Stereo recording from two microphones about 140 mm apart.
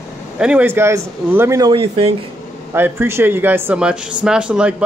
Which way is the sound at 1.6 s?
35° right (ahead or behind).